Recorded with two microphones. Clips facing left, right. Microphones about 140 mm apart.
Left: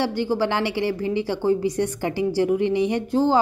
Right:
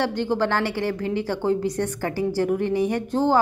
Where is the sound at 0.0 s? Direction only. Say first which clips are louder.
Even; 10° left (ahead or behind).